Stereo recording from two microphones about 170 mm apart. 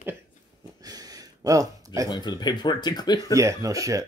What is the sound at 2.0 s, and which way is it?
Speech, 25° left (ahead or behind).